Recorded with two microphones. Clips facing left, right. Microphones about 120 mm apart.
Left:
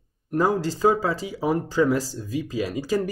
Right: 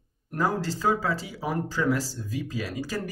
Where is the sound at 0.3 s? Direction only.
20° left (ahead or behind).